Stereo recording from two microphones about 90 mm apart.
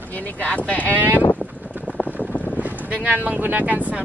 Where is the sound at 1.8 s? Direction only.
15° left (ahead or behind).